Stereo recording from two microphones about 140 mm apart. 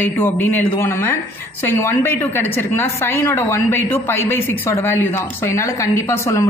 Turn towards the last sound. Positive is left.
turn(degrees=20)  # may be behind; listen again after turning